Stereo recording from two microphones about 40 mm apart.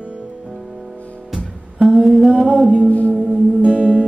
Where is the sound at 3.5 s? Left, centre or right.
Right.